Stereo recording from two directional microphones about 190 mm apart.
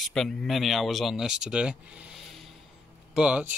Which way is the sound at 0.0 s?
Centre (ahead or behind).